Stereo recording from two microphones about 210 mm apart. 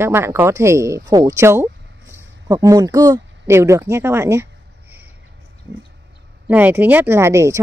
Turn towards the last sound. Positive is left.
turn(degrees=-15)  # may be behind; listen again after turning